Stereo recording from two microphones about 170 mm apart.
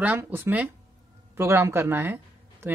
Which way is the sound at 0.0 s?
10° right (ahead or behind).